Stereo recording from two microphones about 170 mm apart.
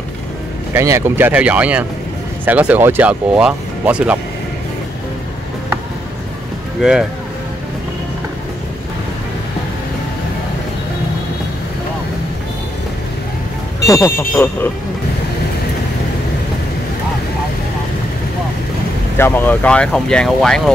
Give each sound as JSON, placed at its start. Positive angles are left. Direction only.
{"t": 0.7, "sound": "speech", "side_deg": -15}
{"t": 6.8, "sound": "speech", "side_deg": -5}
{"t": 13.8, "sound": "speech", "side_deg": 15}
{"t": 19.1, "sound": "speech", "side_deg": 10}